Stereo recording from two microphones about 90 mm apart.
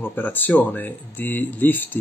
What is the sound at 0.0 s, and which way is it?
Speech, 20° left (ahead or behind).